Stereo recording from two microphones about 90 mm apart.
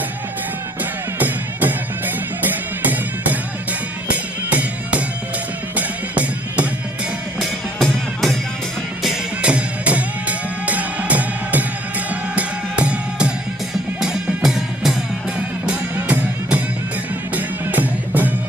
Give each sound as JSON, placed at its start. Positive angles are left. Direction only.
{"t": 1.2, "sound": "music", "side_deg": -20}
{"t": 4.1, "sound": "music", "side_deg": -15}
{"t": 7.3, "sound": "music", "side_deg": 0}
{"t": 9.0, "sound": "music", "side_deg": -10}
{"t": 17.6, "sound": "music", "side_deg": -20}